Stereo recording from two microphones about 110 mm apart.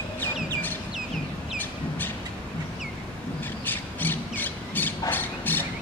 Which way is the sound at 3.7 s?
15° left (ahead or behind).